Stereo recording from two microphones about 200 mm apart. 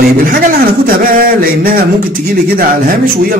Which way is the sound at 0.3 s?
45° right (ahead or behind).